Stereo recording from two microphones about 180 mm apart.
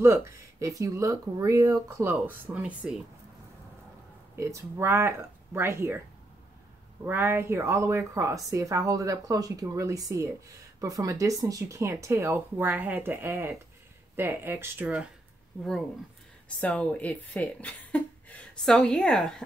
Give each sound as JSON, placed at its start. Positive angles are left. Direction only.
{"t": 0.0, "sound": "speech", "side_deg": -15}
{"t": 4.4, "sound": "speech", "side_deg": -15}
{"t": 7.1, "sound": "speech", "side_deg": -10}
{"t": 16.4, "sound": "speech", "side_deg": 5}